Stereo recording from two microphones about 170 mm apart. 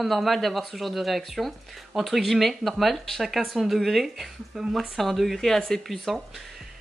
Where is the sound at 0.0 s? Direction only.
Centre (ahead or behind).